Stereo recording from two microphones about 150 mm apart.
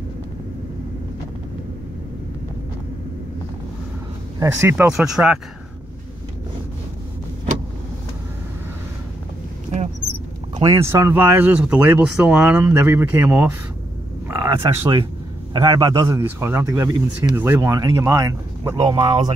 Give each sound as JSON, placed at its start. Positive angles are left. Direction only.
{"t": 4.4, "sound": "speech", "side_deg": -15}
{"t": 4.9, "sound": "speech", "side_deg": -5}
{"t": 10.6, "sound": "speech", "side_deg": -20}